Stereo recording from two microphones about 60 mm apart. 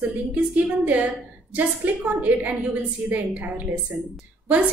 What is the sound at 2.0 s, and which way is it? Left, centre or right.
A woman's voice, right.